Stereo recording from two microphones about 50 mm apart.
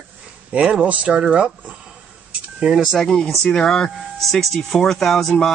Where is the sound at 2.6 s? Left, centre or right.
Centre.